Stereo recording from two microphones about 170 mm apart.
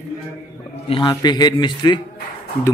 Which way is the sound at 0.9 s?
25° left (ahead or behind).